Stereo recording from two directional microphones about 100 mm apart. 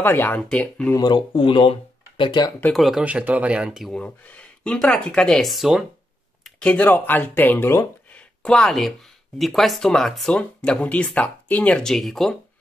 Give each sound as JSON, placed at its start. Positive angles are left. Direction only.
{"t": 0.0, "sound": "speech", "side_deg": 20}
{"t": 0.4, "sound": "speech", "side_deg": 10}
{"t": 0.9, "sound": "speech", "side_deg": 45}
{"t": 2.7, "sound": "speech", "side_deg": 0}
{"t": 3.0, "sound": "speech", "side_deg": -15}
{"t": 3.9, "sound": "speech", "side_deg": 15}
{"t": 6.4, "sound": "speech", "side_deg": 10}
{"t": 8.4, "sound": "speech", "side_deg": 10}